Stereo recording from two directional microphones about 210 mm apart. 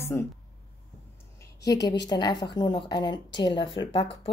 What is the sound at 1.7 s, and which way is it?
A woman's voice, 20° left (ahead or behind).